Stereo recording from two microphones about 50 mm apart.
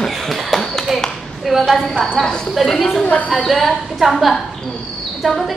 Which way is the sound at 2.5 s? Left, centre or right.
Centre.